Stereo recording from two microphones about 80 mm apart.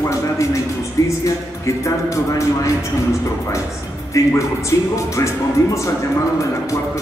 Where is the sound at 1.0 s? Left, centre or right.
Left.